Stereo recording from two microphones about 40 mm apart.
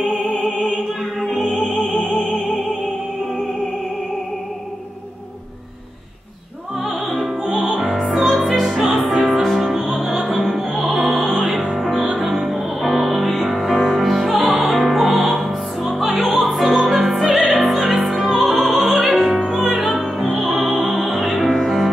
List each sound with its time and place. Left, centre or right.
1.2 s opera: centre
2.0 s opera: left
7.1 s opera: centre
7.5 s music: centre
7.8 s music: centre
8.5 s opera: centre
9.2 s music: centre
10.1 s opera: centre
11.7 s music: centre
19.8 s opera: centre
20.6 s music: centre